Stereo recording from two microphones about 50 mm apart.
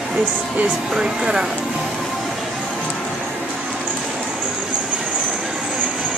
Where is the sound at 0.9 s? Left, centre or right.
Centre.